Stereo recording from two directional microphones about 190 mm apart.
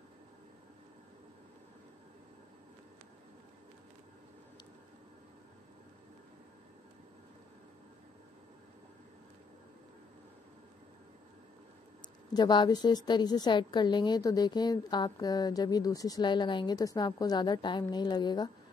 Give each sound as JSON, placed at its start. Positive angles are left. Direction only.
{"t": 12.4, "sound": "a woman's voice", "side_deg": 20}